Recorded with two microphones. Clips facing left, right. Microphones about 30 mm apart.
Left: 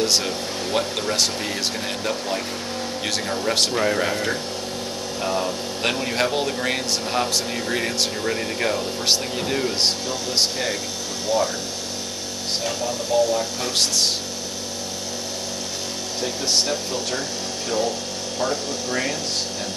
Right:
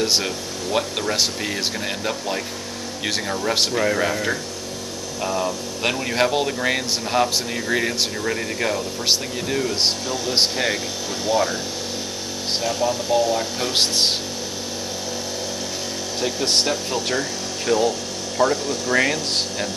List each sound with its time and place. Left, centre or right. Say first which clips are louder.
0.0 s speech: even; centre
5.4 s speech: right 1 dB; centre
10.3 s speech: right 3 dB; right
12.8 s speech: right 1 dB; centre
16.2 s speech: right 2 dB; centre
18.4 s speech: right 6 dB; centre
18.9 s speech: right 7 dB; right